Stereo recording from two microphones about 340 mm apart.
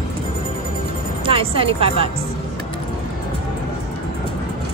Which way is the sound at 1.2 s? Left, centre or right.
Centre.